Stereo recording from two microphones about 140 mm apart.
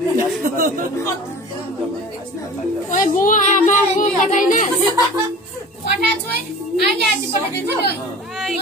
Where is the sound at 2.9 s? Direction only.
70° left (ahead or behind).